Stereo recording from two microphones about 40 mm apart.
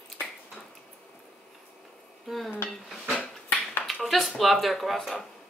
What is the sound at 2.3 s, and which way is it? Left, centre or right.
Dishes, centre.